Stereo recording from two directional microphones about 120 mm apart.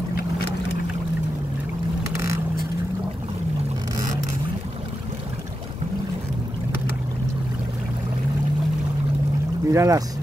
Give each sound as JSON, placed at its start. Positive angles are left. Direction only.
{"t": 3.9, "sound": "vehicle", "side_deg": -30}
{"t": 9.7, "sound": "speech", "side_deg": -25}